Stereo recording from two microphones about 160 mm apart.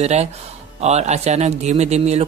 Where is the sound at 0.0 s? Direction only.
45° right (ahead or behind).